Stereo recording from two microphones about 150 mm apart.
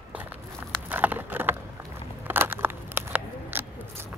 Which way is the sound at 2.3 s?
15° right (ahead or behind).